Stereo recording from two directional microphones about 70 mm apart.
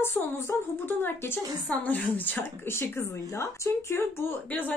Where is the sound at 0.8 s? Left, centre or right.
Left.